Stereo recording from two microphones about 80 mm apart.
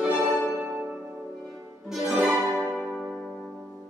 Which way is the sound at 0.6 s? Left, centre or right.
Centre.